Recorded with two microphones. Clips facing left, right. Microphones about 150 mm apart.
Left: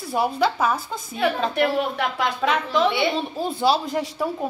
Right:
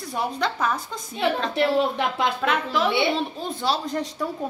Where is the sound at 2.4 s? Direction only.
5° right (ahead or behind).